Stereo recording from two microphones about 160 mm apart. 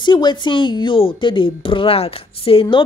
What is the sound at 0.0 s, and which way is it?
A woman's voice, 30° left (ahead or behind).